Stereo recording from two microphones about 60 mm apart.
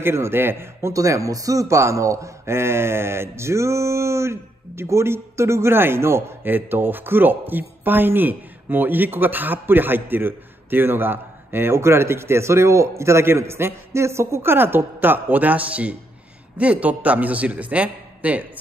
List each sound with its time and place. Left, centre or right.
0.0 s a man's voice: right
0.9 s a man's voice: right